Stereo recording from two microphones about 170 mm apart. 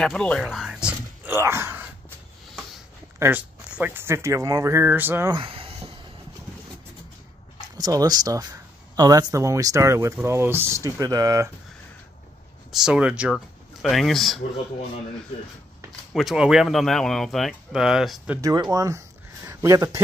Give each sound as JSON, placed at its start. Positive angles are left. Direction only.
{"t": 0.0, "sound": "speech", "side_deg": 5}
{"t": 3.2, "sound": "speech", "side_deg": -10}
{"t": 5.3, "sound": "speech", "side_deg": -30}
{"t": 7.6, "sound": "speech", "side_deg": -25}
{"t": 12.7, "sound": "speech", "side_deg": -5}
{"t": 16.1, "sound": "speech", "side_deg": 0}
{"t": 18.4, "sound": "speech", "side_deg": -20}